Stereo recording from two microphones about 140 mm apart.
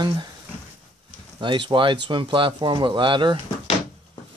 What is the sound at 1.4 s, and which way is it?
Speech, 35° right (ahead or behind).